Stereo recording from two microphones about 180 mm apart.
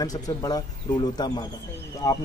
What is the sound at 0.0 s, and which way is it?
A man's voice, 20° left (ahead or behind).